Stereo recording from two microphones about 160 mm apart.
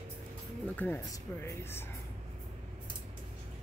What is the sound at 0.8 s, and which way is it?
Speech, 10° left (ahead or behind).